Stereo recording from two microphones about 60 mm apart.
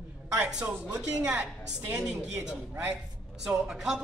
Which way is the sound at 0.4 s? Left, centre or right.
Centre.